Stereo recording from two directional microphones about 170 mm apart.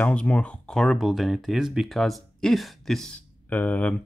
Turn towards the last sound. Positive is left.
turn(degrees=10)  # may be behind; listen again after turning